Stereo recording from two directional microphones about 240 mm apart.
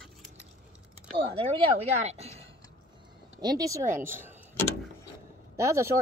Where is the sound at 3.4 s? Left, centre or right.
Centre.